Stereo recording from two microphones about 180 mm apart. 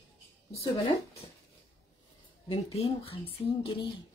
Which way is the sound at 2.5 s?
35° left (ahead or behind).